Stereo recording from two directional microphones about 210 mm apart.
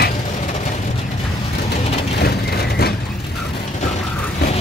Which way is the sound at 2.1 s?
50° left (ahead or behind).